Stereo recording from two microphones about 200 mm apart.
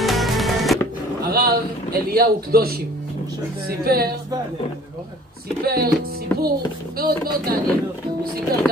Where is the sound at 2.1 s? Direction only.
50° right (ahead or behind).